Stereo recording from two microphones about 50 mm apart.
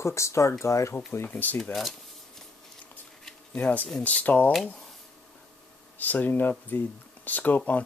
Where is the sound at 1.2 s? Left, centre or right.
Left.